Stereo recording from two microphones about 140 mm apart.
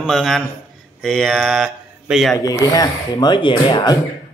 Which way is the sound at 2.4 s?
25° left (ahead or behind).